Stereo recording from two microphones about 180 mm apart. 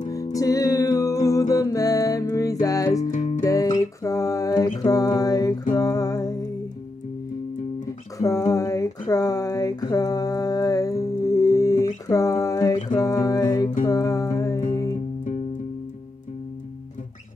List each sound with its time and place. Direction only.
0.1 s music: 20° left (ahead or behind)
3.1 s music: 40° left (ahead or behind)
3.4 s music: 20° left (ahead or behind)
8.2 s a sound: 20° left (ahead or behind)
13.0 s music: 20° left (ahead or behind)